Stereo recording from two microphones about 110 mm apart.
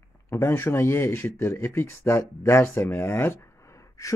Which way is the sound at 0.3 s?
20° left (ahead or behind).